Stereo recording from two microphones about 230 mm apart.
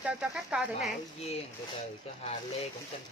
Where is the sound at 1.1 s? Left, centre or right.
Left.